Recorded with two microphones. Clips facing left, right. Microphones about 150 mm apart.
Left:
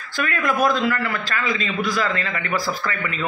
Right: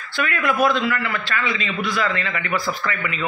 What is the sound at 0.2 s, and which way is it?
A man's voice, 40° left (ahead or behind).